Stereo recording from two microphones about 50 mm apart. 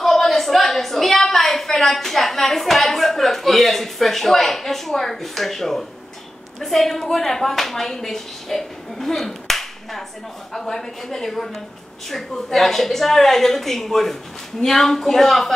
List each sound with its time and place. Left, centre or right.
0.0 s a woman's voice: centre